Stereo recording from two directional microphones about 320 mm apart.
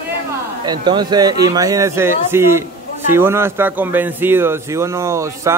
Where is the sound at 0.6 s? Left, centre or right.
Centre.